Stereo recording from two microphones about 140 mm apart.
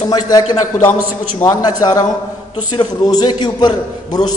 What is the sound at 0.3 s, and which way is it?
A man's voice, 30° left (ahead or behind).